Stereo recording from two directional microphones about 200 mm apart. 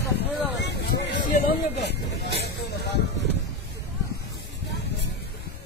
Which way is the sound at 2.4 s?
55° left (ahead or behind).